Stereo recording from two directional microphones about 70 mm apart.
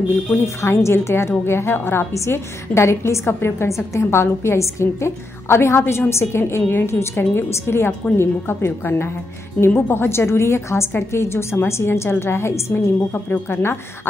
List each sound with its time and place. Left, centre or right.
0.1 s a woman's voice: left